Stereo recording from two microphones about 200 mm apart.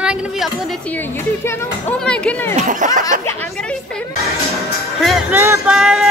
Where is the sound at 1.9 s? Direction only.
5° left (ahead or behind).